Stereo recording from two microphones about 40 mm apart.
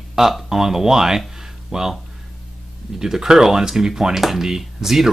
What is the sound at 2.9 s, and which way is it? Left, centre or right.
Speech, centre.